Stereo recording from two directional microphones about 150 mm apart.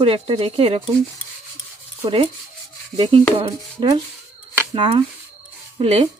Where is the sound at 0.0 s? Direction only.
40° right (ahead or behind).